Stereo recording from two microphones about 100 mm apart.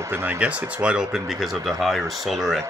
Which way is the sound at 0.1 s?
20° right (ahead or behind).